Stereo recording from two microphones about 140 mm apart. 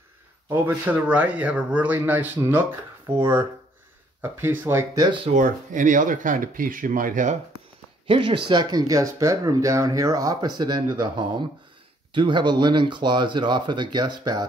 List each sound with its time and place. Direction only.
0.5 s speech: 15° right (ahead or behind)
4.2 s speech: 15° right (ahead or behind)
5.3 s speech: 70° right (ahead or behind)
8.1 s speech: 40° right (ahead or behind)